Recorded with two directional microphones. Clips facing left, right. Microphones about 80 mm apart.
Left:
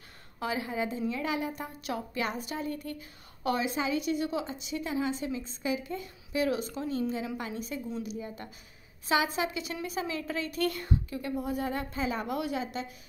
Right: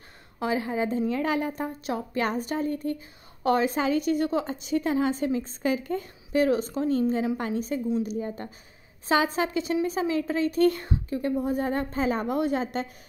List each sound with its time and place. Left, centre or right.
0.4 s a woman's voice: right